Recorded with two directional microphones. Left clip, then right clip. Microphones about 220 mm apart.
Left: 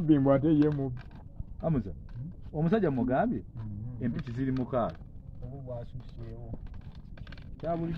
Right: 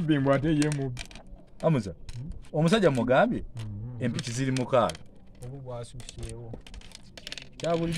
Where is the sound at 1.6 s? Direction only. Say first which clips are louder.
Right 6 dB; 60° right (ahead or behind).